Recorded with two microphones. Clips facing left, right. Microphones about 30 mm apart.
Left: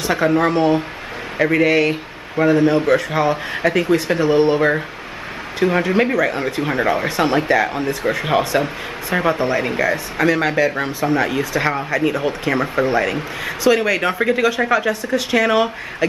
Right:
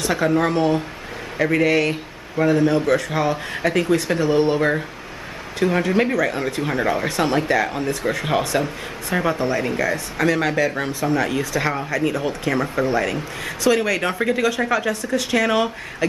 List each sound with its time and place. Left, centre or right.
0.0 s speech: centre